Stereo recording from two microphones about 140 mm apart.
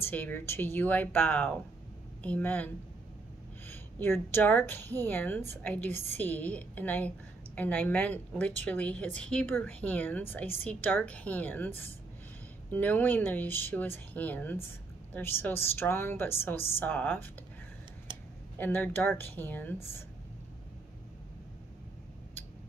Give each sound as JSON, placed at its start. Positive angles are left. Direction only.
{"t": 0.0, "sound": "speech", "side_deg": 15}
{"t": 5.9, "sound": "a woman's voice", "side_deg": -55}
{"t": 6.2, "sound": "speech", "side_deg": 15}
{"t": 18.6, "sound": "speech", "side_deg": 15}